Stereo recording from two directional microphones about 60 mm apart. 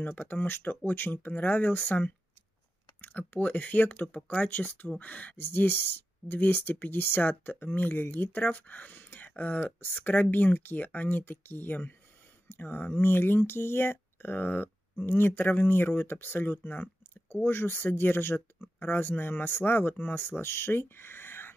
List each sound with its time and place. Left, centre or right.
0.0 s speech: left